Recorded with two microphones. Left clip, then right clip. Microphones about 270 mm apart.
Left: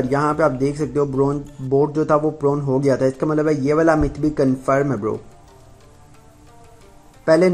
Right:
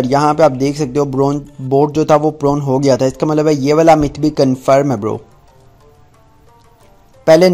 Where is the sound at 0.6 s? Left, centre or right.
Right.